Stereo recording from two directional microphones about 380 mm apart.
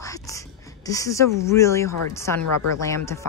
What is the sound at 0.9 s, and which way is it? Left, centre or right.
Speech, centre.